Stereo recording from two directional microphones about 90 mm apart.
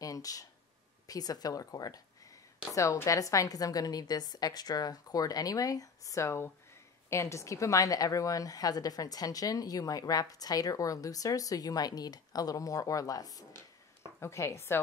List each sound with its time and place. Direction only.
0.0 s a sound: 40° left (ahead or behind)
1.0 s a woman's voice: 45° left (ahead or behind)
14.2 s speech: 30° left (ahead or behind)